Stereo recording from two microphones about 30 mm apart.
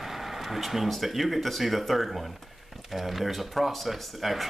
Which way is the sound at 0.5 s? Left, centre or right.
Centre.